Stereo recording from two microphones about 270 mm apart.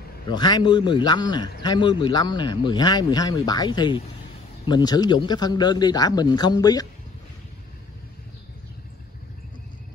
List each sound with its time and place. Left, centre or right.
0.3 s a man's voice: centre